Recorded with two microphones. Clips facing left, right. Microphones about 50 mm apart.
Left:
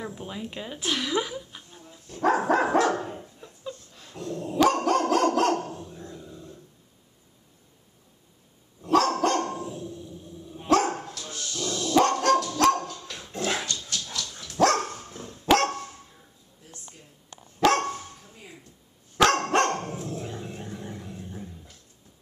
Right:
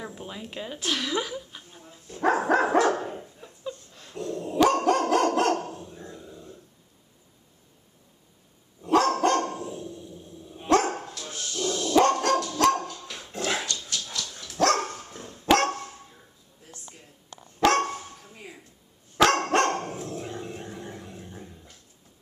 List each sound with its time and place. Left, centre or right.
0.0 s a woman's voice: centre
1.7 s dog: centre
8.8 s dog: centre
11.2 s dog: right
11.9 s dog: centre
14.8 s dog: centre
17.6 s dog: centre
19.1 s dog: centre